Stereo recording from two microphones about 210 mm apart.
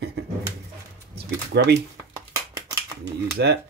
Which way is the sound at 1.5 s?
50° right (ahead or behind).